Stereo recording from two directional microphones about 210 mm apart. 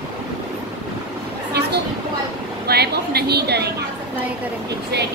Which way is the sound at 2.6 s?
50° right (ahead or behind).